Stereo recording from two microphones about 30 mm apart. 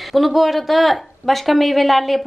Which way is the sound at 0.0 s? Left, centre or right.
Centre.